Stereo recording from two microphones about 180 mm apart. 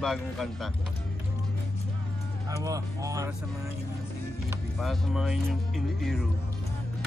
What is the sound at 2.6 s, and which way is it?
Speech, 20° right (ahead or behind).